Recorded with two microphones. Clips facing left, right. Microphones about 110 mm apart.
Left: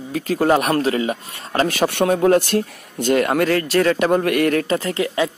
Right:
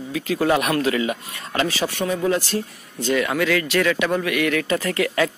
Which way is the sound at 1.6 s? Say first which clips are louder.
Left 6 dB; 55° left (ahead or behind).